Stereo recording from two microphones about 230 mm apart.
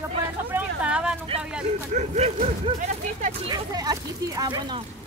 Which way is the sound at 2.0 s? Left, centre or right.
Right.